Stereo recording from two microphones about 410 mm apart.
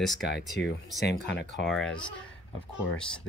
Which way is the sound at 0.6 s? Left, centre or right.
Left.